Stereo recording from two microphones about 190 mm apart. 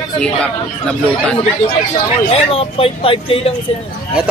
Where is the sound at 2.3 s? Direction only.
30° left (ahead or behind).